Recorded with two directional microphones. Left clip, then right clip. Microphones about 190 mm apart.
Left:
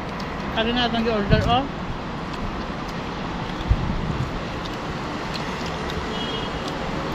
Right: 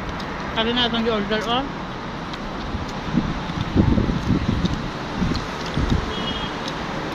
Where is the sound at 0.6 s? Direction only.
15° right (ahead or behind).